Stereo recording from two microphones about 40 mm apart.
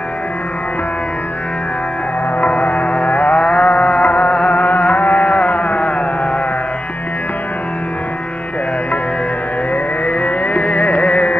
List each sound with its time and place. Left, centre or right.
2.4 s music: left
10.0 s music: left